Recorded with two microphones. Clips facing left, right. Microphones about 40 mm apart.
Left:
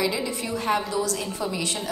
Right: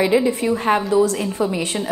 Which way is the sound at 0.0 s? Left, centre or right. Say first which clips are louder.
Right 9 dB; right.